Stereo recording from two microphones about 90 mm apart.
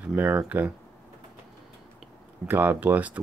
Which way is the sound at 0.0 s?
20° right (ahead or behind).